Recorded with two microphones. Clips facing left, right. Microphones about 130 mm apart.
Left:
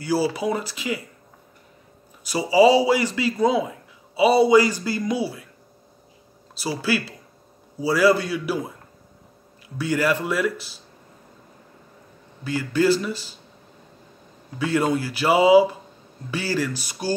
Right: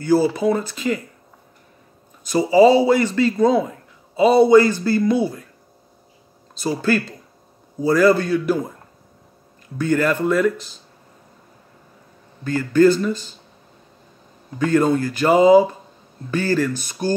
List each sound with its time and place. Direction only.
0.0 s speech: 5° left (ahead or behind)
2.2 s speech: 10° left (ahead or behind)
6.8 s speech: 10° left (ahead or behind)
9.8 s speech: 10° left (ahead or behind)
12.7 s speech: 10° left (ahead or behind)
14.6 s speech: 10° left (ahead or behind)